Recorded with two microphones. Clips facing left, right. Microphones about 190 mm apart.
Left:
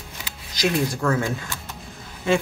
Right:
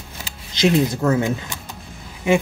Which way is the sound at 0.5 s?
25° right (ahead or behind).